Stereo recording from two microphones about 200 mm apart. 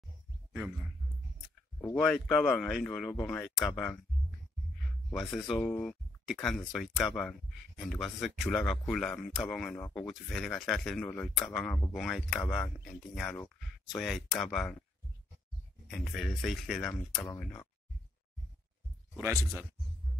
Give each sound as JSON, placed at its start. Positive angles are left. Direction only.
{"t": 1.8, "sound": "speech", "side_deg": 5}
{"t": 5.1, "sound": "speech", "side_deg": 5}
{"t": 15.9, "sound": "speech", "side_deg": 0}
{"t": 19.1, "sound": "speech", "side_deg": -15}